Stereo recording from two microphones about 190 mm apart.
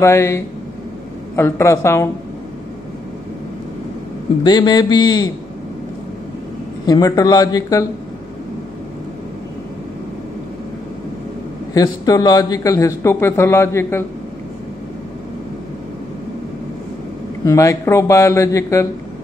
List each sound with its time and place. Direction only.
0.0 s a man's voice: 15° left (ahead or behind)
4.4 s a man's voice: 20° left (ahead or behind)
6.9 s a man's voice: 20° left (ahead or behind)
11.7 s a man's voice: 20° left (ahead or behind)
17.5 s a man's voice: 15° left (ahead or behind)